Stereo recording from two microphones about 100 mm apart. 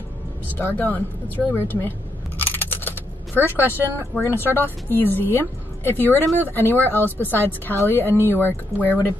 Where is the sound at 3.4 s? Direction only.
20° right (ahead or behind).